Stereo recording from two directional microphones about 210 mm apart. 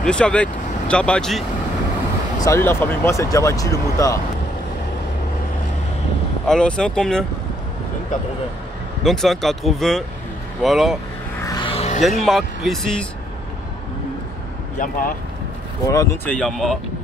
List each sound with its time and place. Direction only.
0.0 s speech: 5° left (ahead or behind)
2.4 s speech: 10° left (ahead or behind)
6.4 s speech: 5° left (ahead or behind)
9.0 s speech: centre (ahead or behind)
11.4 s vehicle: 20° left (ahead or behind)
12.3 s speech: centre (ahead or behind)
14.8 s speech: 40° left (ahead or behind)
15.9 s speech: 15° left (ahead or behind)
16.3 s speech: centre (ahead or behind)